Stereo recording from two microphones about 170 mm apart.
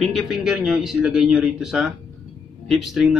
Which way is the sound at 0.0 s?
Centre (ahead or behind).